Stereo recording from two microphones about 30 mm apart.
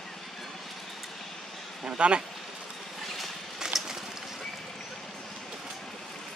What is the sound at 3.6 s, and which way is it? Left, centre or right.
Bird, centre.